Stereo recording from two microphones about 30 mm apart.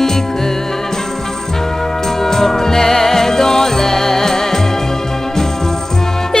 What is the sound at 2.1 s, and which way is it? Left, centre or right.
Music, centre.